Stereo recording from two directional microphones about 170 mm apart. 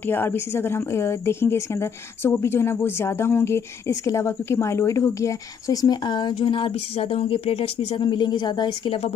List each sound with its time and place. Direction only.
0.0 s a woman's voice: 10° left (ahead or behind); by 9.1 s 30° left (ahead or behind)